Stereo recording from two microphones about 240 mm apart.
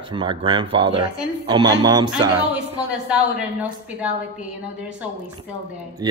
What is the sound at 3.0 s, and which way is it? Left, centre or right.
A woman's voice, centre.